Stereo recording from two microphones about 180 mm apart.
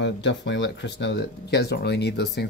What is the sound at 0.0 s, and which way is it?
Speech, 80° left.